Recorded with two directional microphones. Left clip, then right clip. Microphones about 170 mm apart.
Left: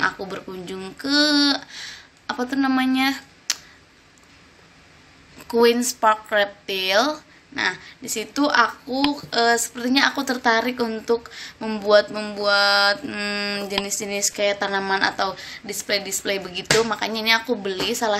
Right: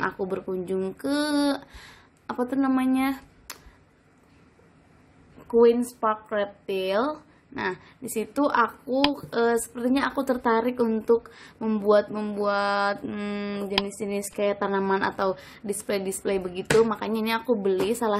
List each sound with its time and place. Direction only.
0.0 s a woman's voice: 40° right (ahead or behind)
5.5 s a woman's voice: 30° right (ahead or behind)
11.9 s mantra: 30° right (ahead or behind)
13.8 s a woman's voice: 25° right (ahead or behind)